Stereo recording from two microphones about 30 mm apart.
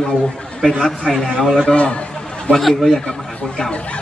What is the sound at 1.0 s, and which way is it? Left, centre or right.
A man's voice, centre.